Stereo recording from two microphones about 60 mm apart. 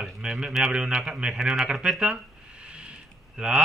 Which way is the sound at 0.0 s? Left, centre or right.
Centre.